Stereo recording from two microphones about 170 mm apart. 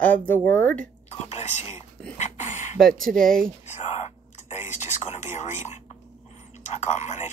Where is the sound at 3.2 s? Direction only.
55° right (ahead or behind).